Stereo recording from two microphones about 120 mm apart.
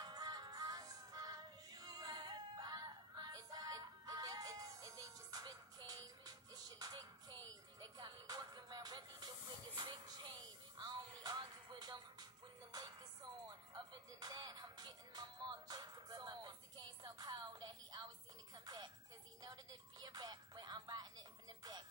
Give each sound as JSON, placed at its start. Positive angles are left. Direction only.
{"t": 0.0, "sound": "music", "side_deg": -35}
{"t": 19.4, "sound": "music", "side_deg": -35}